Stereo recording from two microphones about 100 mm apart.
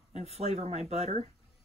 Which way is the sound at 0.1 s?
90° right.